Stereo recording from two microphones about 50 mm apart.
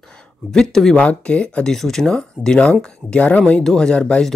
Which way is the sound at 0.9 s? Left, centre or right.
Left.